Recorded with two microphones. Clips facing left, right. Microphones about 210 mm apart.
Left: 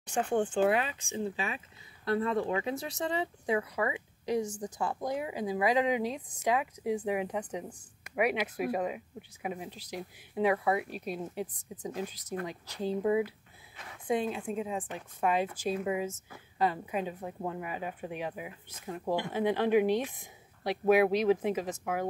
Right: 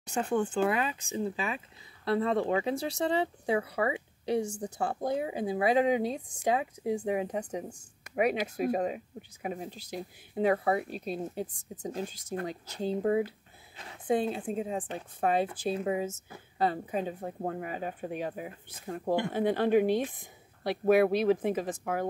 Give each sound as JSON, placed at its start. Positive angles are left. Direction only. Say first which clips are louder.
{"t": 0.0, "sound": "speech", "louder": "even", "side_deg": -40}
{"t": 2.4, "sound": "speech", "louder": "right 3 dB", "side_deg": -35}
{"t": 11.4, "sound": "speech", "louder": "right 1 dB", "side_deg": -45}
{"t": 11.9, "sound": "speech", "louder": "right 1 dB", "side_deg": -30}
{"t": 13.7, "sound": "a sound", "louder": "right 1 dB", "side_deg": -30}
{"t": 14.1, "sound": "speech", "louder": "right 2 dB", "side_deg": -35}
{"t": 17.2, "sound": "speech", "louder": "right 2 dB", "side_deg": -45}